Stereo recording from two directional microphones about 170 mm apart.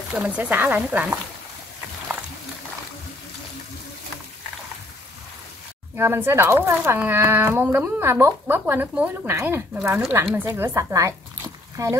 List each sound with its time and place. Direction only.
0.1 s speech: 5° right (ahead or behind)
5.9 s speech: 15° right (ahead or behind)